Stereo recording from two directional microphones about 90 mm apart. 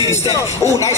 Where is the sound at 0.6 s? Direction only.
35° left (ahead or behind).